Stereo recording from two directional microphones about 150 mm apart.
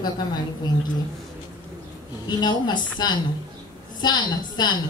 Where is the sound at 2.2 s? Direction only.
30° left (ahead or behind).